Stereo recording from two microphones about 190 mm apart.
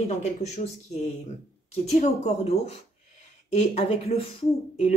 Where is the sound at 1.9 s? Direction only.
35° left (ahead or behind).